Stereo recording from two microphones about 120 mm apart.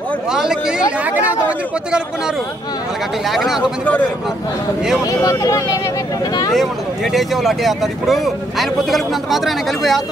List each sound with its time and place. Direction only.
0.3 s speech: 5° right (ahead or behind)
3.3 s speech: centre (ahead or behind)
5.0 s speech: 30° left (ahead or behind)
6.5 s speech: centre (ahead or behind)